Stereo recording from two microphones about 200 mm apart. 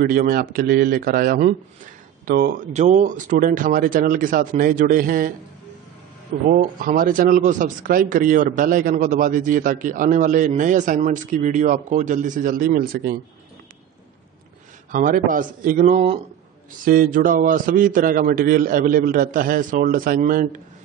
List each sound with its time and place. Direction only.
0.0 s a man's voice: 40° right (ahead or behind)
2.7 s a man's voice: 35° right (ahead or behind)
6.6 s speech: 45° right (ahead or behind)
14.9 s a man's voice: 40° right (ahead or behind)